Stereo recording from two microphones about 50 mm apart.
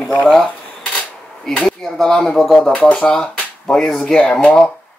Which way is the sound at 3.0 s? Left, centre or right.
Centre.